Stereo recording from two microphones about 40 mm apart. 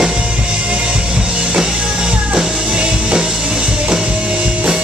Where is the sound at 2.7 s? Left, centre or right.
Right.